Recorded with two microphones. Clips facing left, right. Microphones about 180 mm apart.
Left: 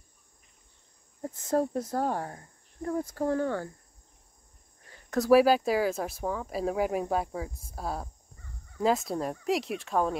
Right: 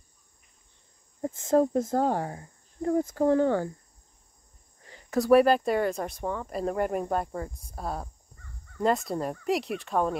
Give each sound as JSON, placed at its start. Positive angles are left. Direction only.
{"t": 1.2, "sound": "speech", "side_deg": -25}
{"t": 5.1, "sound": "speech", "side_deg": 0}